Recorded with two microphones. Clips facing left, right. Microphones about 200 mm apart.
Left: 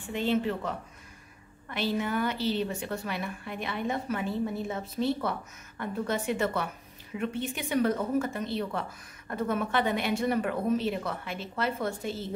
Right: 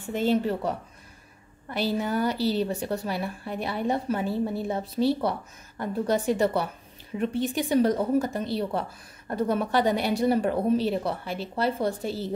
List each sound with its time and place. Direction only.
0.0 s speech: 40° right (ahead or behind)